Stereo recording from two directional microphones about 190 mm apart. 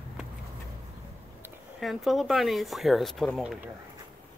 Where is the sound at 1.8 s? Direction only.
Centre (ahead or behind).